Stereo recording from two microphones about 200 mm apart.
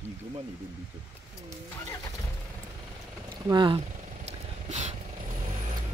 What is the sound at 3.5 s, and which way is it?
Speech, 25° right (ahead or behind).